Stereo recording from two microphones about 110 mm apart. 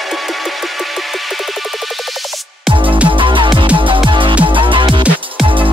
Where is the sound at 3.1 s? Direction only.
50° right (ahead or behind).